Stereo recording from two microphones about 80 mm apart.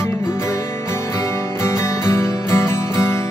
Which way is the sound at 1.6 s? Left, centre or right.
Left.